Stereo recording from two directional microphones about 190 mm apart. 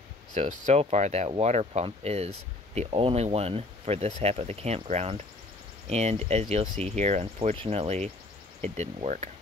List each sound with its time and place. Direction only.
0.3 s speech: 40° right (ahead or behind)